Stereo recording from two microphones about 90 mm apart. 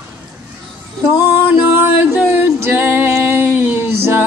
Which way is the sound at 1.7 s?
20° right (ahead or behind).